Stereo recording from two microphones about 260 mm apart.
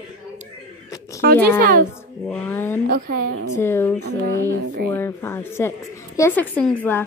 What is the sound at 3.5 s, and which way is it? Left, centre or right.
A woman's voice, centre.